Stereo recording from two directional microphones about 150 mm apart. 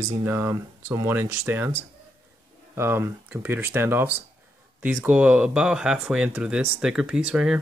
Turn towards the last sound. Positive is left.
turn(degrees=-5)  # may be behind; listen again after turning